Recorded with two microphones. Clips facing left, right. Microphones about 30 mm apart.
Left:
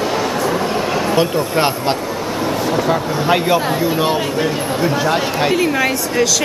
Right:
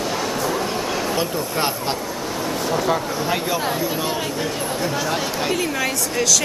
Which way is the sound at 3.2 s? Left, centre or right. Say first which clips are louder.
Left 10 dB; left.